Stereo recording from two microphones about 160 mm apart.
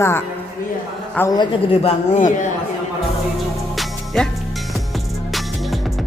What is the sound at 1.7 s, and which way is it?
Speech, 35° left (ahead or behind).